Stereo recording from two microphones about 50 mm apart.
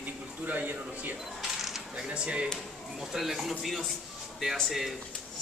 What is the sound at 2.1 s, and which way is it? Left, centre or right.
Speech, right.